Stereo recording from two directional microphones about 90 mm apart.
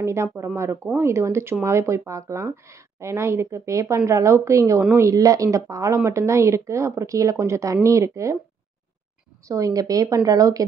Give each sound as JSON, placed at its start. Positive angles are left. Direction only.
{"t": 0.0, "sound": "speech", "side_deg": -30}
{"t": 9.5, "sound": "speech", "side_deg": -40}